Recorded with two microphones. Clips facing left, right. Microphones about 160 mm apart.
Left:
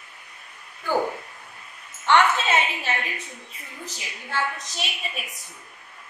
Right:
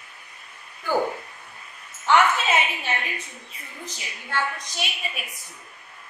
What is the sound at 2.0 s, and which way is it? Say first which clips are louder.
A woman's voice: even; 5° right (ahead or behind).